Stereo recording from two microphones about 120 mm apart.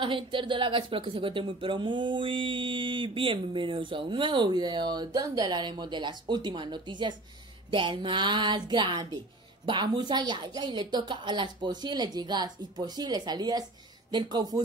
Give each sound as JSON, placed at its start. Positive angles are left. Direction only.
{"t": 0.0, "sound": "a woman's voice", "side_deg": -45}